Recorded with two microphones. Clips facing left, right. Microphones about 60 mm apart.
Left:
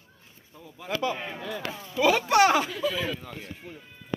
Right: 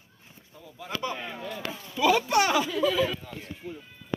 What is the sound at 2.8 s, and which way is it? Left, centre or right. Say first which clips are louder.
Speech: right 4 dB; left.